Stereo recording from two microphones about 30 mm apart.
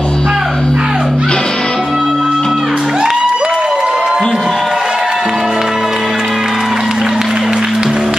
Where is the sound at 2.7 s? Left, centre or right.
Right.